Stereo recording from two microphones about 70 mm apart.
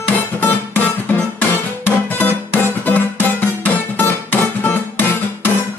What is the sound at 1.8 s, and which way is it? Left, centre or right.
Music, left.